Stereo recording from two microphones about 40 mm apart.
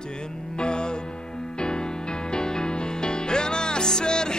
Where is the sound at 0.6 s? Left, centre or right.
Left.